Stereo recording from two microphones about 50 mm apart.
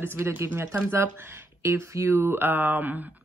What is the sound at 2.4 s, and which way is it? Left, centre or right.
Speech, right.